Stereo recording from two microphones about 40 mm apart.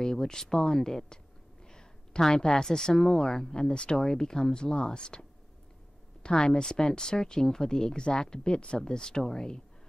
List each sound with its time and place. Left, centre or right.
0.0 s speech: centre
6.2 s speech: left